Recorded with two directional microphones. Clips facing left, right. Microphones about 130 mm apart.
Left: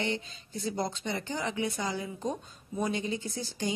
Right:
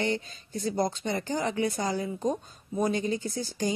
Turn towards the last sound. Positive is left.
turn(degrees=-45)  # may be behind; listen again after turning